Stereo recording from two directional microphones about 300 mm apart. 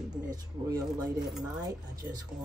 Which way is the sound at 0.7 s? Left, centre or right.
Centre.